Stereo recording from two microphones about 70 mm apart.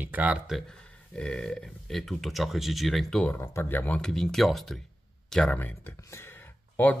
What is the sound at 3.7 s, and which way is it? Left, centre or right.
Speech, left.